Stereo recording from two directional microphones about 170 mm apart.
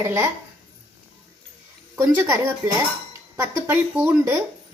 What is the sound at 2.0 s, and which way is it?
A woman's voice, 15° right (ahead or behind).